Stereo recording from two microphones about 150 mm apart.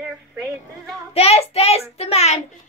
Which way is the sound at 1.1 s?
45° left (ahead or behind).